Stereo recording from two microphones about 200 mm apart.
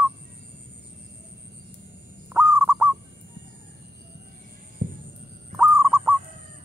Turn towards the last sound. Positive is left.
turn(degrees=-5)  # may be behind; listen again after turning